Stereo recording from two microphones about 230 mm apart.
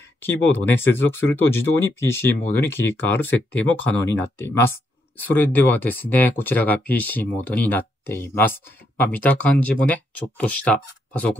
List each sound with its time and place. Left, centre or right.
0.2 s speech: centre